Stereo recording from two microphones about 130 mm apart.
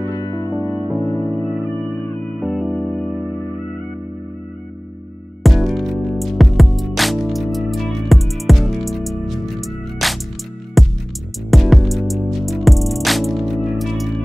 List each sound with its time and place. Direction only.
0.2 s music: 30° left (ahead or behind)
1.0 s music: 15° left (ahead or behind)
2.4 s music: centre (ahead or behind)
5.4 s music: centre (ahead or behind)